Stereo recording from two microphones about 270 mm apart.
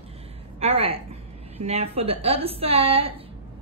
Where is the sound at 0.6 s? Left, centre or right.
Right.